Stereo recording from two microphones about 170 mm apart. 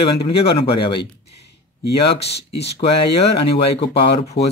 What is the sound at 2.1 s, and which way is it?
Speech, 80° left.